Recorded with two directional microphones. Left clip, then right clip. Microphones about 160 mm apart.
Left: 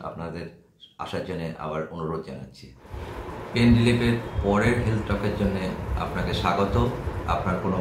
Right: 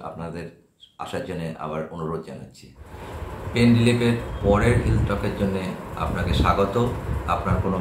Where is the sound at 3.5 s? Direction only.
5° right (ahead or behind).